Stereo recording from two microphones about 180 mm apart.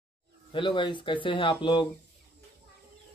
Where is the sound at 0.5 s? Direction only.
25° left (ahead or behind).